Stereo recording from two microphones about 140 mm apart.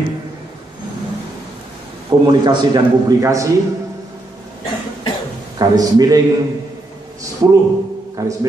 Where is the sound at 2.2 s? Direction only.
30° right (ahead or behind).